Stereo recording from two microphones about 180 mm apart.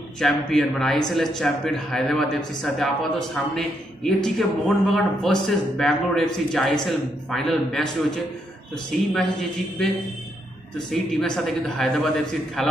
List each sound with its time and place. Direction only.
0.2 s a man's voice: centre (ahead or behind)
8.9 s a man's voice: centre (ahead or behind)
10.9 s a man's voice: 5° left (ahead or behind)